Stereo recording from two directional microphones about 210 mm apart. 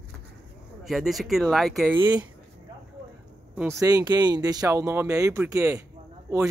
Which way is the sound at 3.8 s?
20° right (ahead or behind).